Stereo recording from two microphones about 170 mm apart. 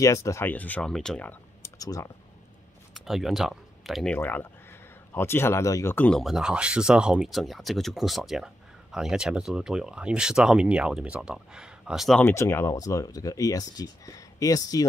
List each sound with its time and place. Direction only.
0.0 s speech: 20° left (ahead or behind)
1.6 s a sound: 20° left (ahead or behind)
2.9 s speech: centre (ahead or behind)
12.2 s speech: 15° left (ahead or behind)